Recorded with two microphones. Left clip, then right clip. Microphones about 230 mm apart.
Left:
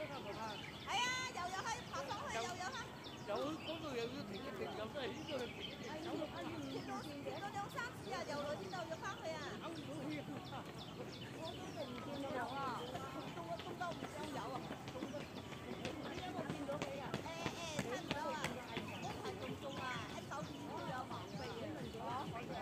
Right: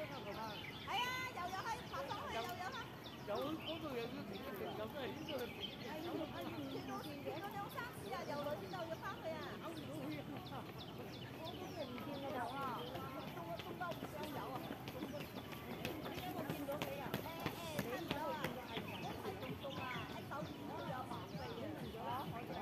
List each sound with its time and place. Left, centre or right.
0.8 s vehicle: left